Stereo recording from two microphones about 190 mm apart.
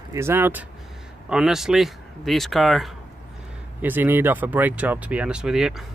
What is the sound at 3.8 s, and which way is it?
Speech, 10° right (ahead or behind).